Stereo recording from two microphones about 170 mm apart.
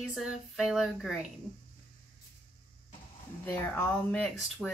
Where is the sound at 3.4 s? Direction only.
10° left (ahead or behind).